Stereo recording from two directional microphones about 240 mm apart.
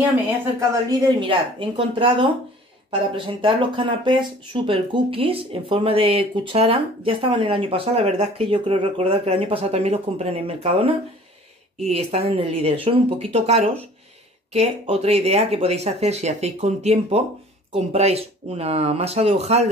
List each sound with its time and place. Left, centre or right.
0.6 s speech: centre